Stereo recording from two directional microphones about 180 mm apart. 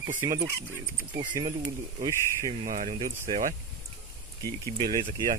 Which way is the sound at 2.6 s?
40° right (ahead or behind).